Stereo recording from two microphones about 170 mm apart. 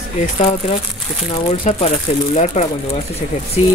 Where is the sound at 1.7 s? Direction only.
40° left (ahead or behind).